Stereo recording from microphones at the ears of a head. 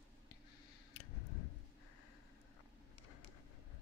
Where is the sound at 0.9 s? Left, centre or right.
Left.